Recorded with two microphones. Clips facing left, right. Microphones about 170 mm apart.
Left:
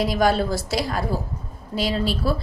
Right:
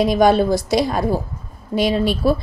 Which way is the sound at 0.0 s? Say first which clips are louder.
Right 6 dB; 20° right (ahead or behind).